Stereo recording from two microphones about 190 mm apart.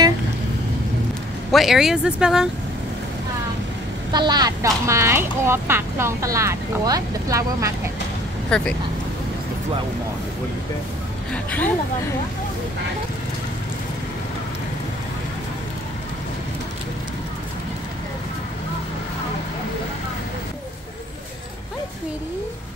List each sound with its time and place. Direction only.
1.5 s speech: centre (ahead or behind)
4.1 s speech: 20° right (ahead or behind)
8.5 s speech: 5° left (ahead or behind)
11.3 s a woman's voice: 10° left (ahead or behind)